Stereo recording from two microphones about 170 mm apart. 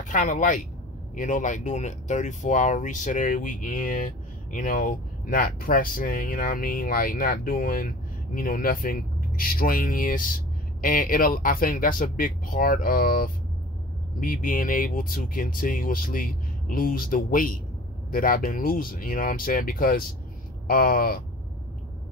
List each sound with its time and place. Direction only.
0.0 s speech: 50° left (ahead or behind)